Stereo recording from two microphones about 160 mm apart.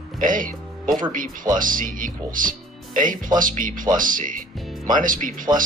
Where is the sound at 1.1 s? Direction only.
55° right (ahead or behind).